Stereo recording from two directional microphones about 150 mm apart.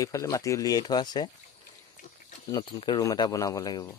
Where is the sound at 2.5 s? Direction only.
25° left (ahead or behind).